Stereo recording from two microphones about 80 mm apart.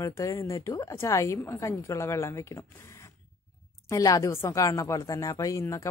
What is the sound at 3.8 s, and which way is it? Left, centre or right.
A woman's voice, left.